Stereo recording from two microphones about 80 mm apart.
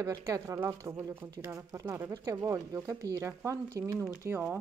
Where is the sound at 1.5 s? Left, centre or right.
Right.